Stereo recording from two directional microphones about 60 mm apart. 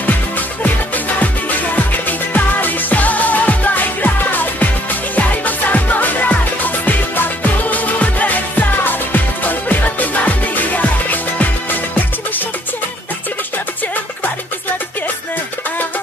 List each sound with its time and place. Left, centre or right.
2.0 s music: left